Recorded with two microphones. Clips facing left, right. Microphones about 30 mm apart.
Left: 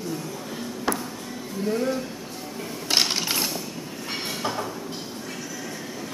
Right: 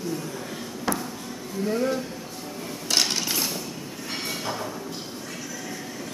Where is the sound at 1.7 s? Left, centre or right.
Centre.